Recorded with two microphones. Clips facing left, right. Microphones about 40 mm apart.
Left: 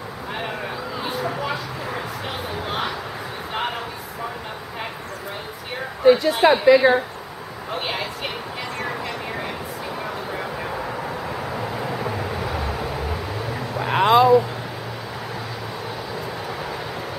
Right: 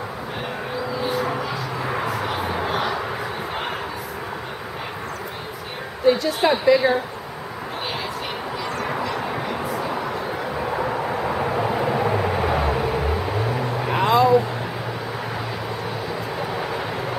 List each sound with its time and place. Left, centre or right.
6.0 s a woman's voice: centre
10.8 s vehicle: centre
14.0 s a sound: left